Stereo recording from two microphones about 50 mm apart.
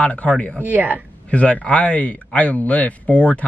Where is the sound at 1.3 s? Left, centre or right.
Left.